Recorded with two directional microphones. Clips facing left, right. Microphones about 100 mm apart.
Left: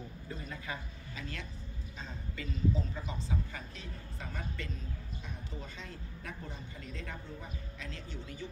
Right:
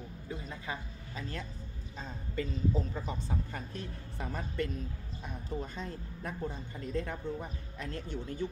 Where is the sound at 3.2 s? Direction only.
55° right (ahead or behind).